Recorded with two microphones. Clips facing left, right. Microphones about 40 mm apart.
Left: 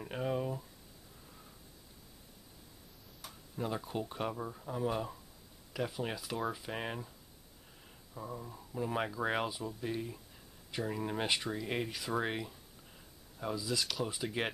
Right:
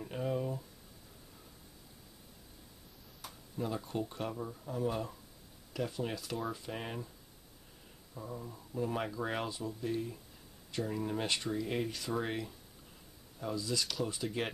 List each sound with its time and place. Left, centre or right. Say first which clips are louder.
0.0 s speech: even; centre
3.2 s tick-tock: right 1 dB; centre
3.5 s speech: even; centre
8.1 s speech: even; centre